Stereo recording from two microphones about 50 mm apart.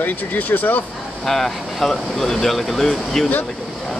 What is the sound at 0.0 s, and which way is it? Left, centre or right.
Speech, left.